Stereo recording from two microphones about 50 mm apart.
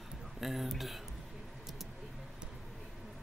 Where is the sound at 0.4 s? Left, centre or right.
Centre.